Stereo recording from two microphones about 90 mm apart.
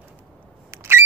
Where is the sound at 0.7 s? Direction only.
30° right (ahead or behind).